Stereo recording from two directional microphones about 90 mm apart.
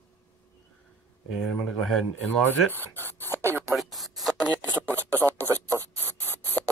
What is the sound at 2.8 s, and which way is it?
Speech, 25° left (ahead or behind).